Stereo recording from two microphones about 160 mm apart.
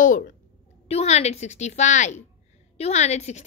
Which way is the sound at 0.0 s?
55° left (ahead or behind).